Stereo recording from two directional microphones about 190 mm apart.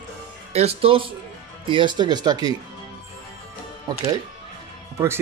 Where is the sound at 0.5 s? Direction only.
30° right (ahead or behind).